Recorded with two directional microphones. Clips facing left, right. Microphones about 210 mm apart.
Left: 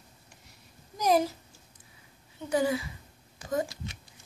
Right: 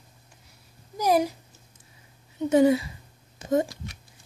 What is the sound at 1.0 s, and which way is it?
Speech, 10° right (ahead or behind).